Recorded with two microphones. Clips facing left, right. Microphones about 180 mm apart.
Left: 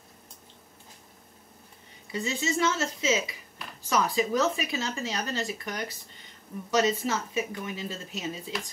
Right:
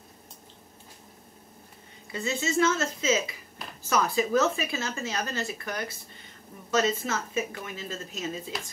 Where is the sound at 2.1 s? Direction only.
15° left (ahead or behind).